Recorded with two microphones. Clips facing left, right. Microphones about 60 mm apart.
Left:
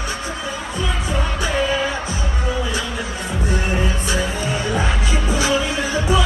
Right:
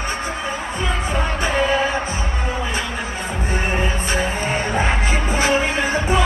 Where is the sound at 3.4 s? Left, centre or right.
Right.